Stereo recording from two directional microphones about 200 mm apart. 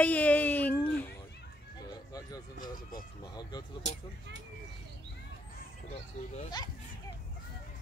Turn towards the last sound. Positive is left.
turn(degrees=35)  # may be behind; listen again after turning